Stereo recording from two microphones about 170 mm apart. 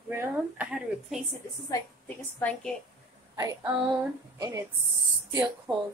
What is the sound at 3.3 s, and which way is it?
A woman's voice, 20° right (ahead or behind).